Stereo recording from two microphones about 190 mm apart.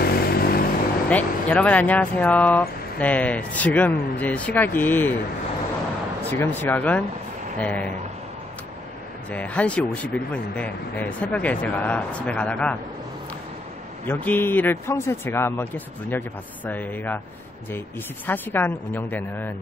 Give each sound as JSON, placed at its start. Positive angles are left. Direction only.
{"t": 0.0, "sound": "vehicle", "side_deg": 55}
{"t": 1.0, "sound": "speech", "side_deg": 5}
{"t": 6.3, "sound": "speech", "side_deg": 10}
{"t": 9.3, "sound": "speech", "side_deg": 5}
{"t": 14.0, "sound": "speech", "side_deg": 10}